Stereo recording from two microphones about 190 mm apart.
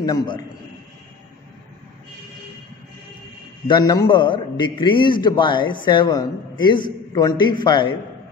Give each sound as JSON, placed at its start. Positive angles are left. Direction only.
{"t": 0.0, "sound": "a man's voice", "side_deg": 20}
{"t": 3.6, "sound": "a man's voice", "side_deg": 20}